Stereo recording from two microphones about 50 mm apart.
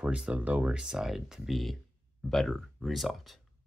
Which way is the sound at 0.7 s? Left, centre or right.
Centre.